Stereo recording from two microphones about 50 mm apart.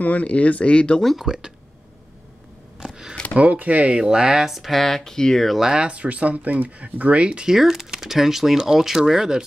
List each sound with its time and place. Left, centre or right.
0.0 s speech: left
1.2 s speech: centre
2.8 s a sound: centre
3.3 s speech: right
4.0 s speech: centre
5.6 s speech: centre
7.5 s speech: centre